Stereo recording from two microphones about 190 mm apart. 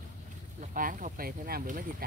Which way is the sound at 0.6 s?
45° right (ahead or behind).